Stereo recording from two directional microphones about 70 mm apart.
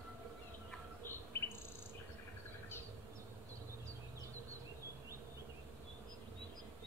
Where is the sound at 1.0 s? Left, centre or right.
Left.